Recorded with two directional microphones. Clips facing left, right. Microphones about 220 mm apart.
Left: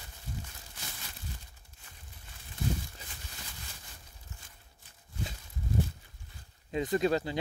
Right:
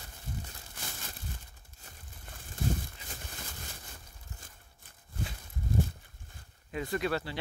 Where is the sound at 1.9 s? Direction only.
50° right (ahead or behind).